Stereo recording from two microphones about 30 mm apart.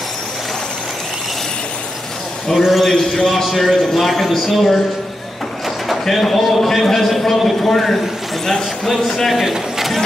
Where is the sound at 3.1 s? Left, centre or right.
Centre.